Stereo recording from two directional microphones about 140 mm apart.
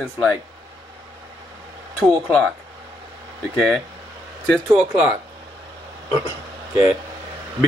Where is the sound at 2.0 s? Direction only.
5° left (ahead or behind).